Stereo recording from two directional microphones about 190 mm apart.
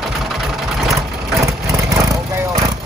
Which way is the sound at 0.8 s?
15° right (ahead or behind).